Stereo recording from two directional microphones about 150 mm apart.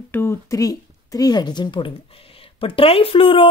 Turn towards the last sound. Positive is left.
turn(degrees=35)  # may be behind; listen again after turning